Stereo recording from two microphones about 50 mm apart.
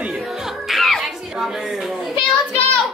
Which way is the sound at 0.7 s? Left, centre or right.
Centre.